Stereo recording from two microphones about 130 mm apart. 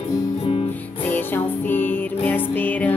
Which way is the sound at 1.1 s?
15° left (ahead or behind).